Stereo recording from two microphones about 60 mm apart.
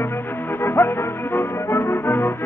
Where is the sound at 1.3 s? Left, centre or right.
Left.